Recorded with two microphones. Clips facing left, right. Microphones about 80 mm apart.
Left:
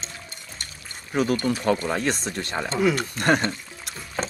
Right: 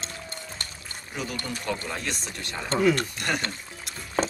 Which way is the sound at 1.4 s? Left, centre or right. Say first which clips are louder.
Left 9 dB; left.